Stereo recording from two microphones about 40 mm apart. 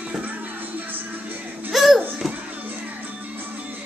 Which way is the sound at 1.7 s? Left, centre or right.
Centre.